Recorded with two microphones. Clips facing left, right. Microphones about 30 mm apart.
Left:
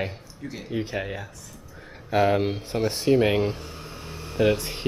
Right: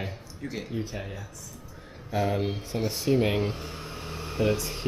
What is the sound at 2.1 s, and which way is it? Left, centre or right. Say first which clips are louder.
Speech: left 6 dB; left.